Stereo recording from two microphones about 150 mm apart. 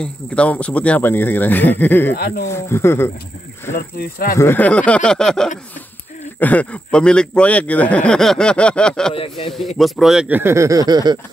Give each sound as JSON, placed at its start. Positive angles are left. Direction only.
{"t": 0.0, "sound": "speech", "side_deg": 10}
{"t": 2.1, "sound": "speech", "side_deg": 90}
{"t": 2.4, "sound": "speech", "side_deg": 15}
{"t": 4.0, "sound": "speech", "side_deg": 80}
{"t": 4.4, "sound": "speech", "side_deg": 15}
{"t": 9.1, "sound": "speech", "side_deg": 40}
{"t": 9.8, "sound": "speech", "side_deg": 0}